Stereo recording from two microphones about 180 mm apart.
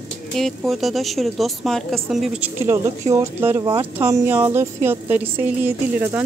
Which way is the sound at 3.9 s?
15° right (ahead or behind).